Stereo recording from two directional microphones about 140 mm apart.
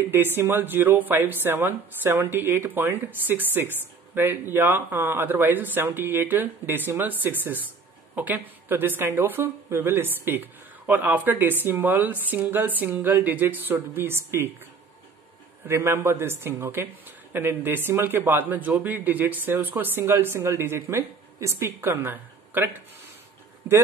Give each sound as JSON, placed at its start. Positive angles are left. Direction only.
{"t": 0.1, "sound": "a woman's voice", "side_deg": -15}
{"t": 15.6, "sound": "a woman's voice", "side_deg": -15}